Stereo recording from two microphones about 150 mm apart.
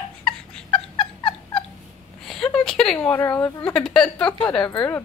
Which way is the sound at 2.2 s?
5° left (ahead or behind).